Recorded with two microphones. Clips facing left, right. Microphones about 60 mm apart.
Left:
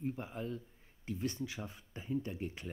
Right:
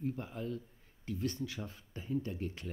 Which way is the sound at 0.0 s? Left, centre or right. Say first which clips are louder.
Right 1 dB; centre.